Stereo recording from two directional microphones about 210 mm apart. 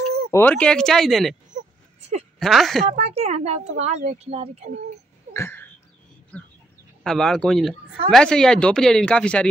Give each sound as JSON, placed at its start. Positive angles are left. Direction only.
{"t": 0.3, "sound": "speech", "side_deg": 10}
{"t": 1.5, "sound": "a sound", "side_deg": -30}
{"t": 2.3, "sound": "speech", "side_deg": 0}
{"t": 2.9, "sound": "speech", "side_deg": -30}
{"t": 5.3, "sound": "a sound", "side_deg": 10}
{"t": 7.0, "sound": "speech", "side_deg": 0}